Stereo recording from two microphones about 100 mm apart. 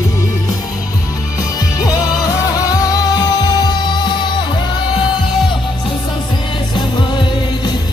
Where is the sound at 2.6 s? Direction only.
35° left (ahead or behind).